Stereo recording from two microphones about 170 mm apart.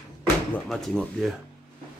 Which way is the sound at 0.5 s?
Centre (ahead or behind).